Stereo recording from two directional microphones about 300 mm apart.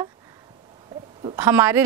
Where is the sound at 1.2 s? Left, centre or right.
Centre.